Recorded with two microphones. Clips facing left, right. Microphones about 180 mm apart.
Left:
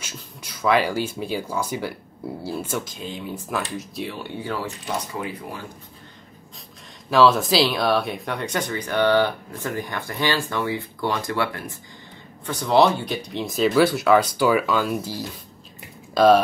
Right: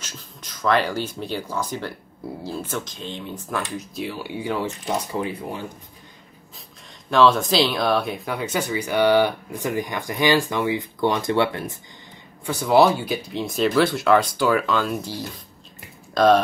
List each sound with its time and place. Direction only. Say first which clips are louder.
0.0 s speech: left 2 dB; 10° left (ahead or behind)
4.4 s speech: right 4 dB; 20° right (ahead or behind)
7.1 s speech: even; 5° left (ahead or behind); by 11.8 s 20° right (ahead or behind)
12.4 s speech: right 1 dB; 10° right (ahead or behind)